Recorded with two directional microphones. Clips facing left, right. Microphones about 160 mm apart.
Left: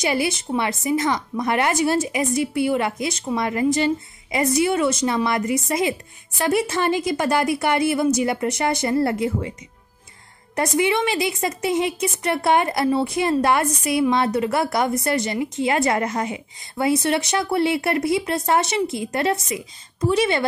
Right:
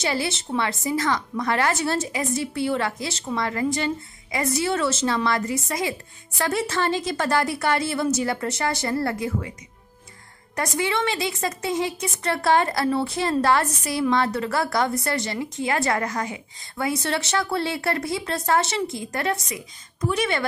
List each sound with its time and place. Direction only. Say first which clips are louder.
0.0 s a woman's voice: left 4 dB; 15° left (ahead or behind)
10.5 s a woman's voice: left 5 dB; 20° left (ahead or behind)